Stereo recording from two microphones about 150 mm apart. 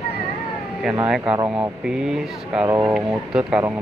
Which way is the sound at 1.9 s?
5° right (ahead or behind).